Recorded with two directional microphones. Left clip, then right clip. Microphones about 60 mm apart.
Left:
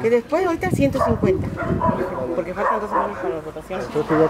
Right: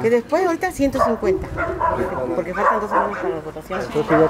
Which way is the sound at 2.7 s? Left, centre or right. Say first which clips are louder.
Right 4 dB; right.